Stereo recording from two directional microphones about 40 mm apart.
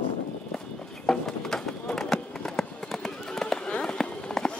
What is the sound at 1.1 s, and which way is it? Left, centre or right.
Run, centre.